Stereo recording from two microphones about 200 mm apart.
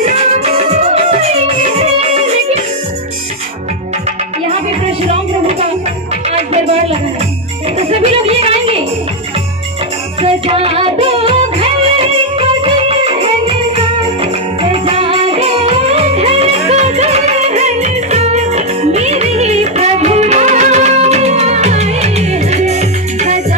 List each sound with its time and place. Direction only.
0.0 s music: 30° right (ahead or behind)
5.0 s music: 30° right (ahead or behind)
8.0 s a sound: 30° right (ahead or behind)
10.2 s music: 30° right (ahead or behind)